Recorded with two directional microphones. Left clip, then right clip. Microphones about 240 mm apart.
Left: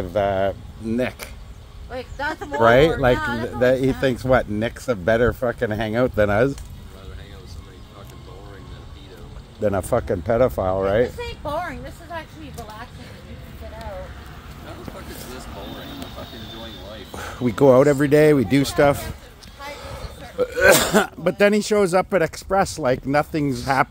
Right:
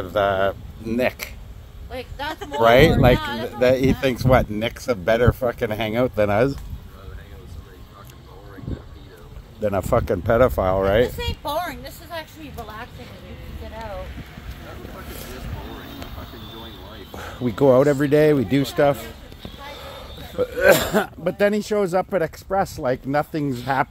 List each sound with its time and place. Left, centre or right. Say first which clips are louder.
0.1 s speech: right 1 dB; centre
1.9 s speech: left 2 dB; right
2.6 s speech: right 1 dB; centre
3.2 s speech: left 2 dB; right
3.4 s speech: right 1 dB; centre
9.6 s speech: even; centre
11.1 s a sound: right 1 dB; right
15.0 s vehicle: even; centre
16.5 s a sound: left 2 dB; left
17.1 s speech: left 2 dB; centre